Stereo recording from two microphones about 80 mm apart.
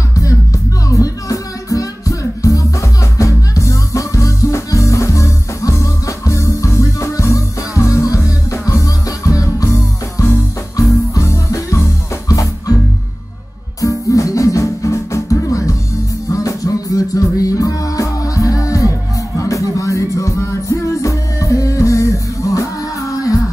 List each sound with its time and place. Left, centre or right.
0.1 s music: left